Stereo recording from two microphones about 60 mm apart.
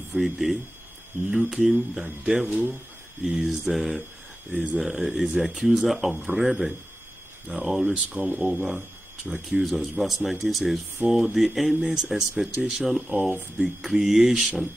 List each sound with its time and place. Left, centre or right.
0.1 s speech: centre
2.2 s speech: right
3.3 s speech: centre
7.9 s speech: centre
8.4 s speech: centre
11.0 s speech: right
11.3 s speech: centre
11.8 s speech: centre